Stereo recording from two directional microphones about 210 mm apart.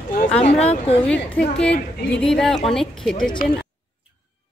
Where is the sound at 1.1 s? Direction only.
5° left (ahead or behind).